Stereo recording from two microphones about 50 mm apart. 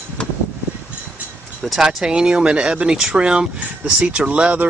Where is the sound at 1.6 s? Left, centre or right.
Centre.